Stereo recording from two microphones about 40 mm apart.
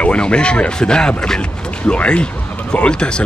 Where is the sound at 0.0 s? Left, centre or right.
Left.